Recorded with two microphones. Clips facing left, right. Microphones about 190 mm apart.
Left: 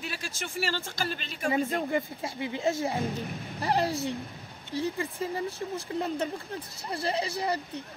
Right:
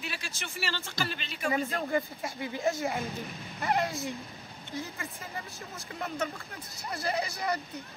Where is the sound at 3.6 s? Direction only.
35° left (ahead or behind).